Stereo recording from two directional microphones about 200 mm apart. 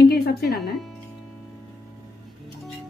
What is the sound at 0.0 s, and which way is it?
Music, 50° left (ahead or behind).